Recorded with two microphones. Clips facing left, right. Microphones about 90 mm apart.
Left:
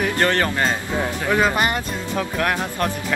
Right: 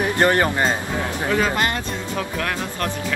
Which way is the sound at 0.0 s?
20° right (ahead or behind).